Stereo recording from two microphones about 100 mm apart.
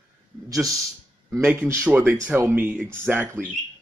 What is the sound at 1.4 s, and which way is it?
Speech, 15° right (ahead or behind).